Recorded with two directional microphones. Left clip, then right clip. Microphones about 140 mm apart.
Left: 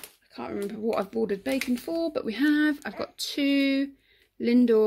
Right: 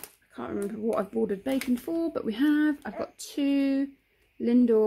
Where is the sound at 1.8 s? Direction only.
20° right (ahead or behind).